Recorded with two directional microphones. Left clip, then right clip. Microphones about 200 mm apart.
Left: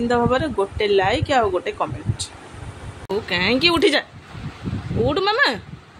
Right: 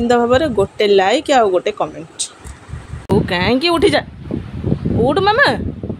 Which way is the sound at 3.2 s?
25° right (ahead or behind).